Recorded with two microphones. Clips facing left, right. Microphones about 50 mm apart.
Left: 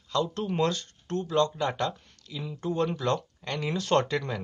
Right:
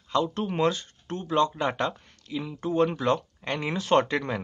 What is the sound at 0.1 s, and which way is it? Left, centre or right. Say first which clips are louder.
Speech: right 2 dB; centre.